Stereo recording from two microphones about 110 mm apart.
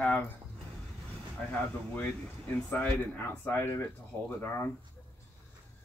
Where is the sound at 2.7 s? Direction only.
15° left (ahead or behind).